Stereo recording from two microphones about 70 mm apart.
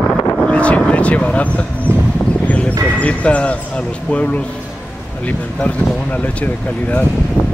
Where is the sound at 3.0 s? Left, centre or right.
Centre.